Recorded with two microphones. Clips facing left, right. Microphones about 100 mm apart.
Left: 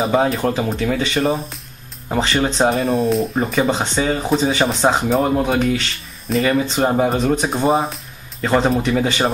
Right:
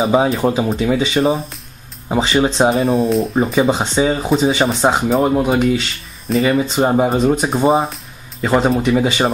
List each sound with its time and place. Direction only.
0.1 s speech: 5° right (ahead or behind)